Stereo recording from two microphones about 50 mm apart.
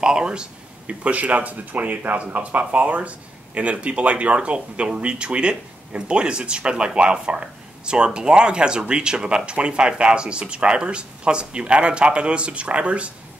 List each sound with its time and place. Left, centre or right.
0.0 s speech: centre